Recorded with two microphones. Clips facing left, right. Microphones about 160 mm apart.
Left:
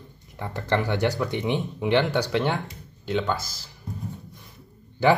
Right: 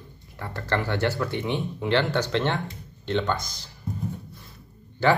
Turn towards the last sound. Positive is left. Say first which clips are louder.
# left 2 dB
turn(degrees=15)  # may be behind; listen again after turning